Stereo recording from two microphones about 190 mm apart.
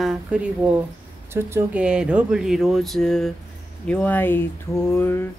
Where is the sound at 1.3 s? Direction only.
15° right (ahead or behind); by 5.3 s 10° left (ahead or behind).